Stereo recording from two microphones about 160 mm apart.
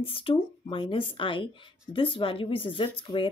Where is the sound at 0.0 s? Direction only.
35° left (ahead or behind).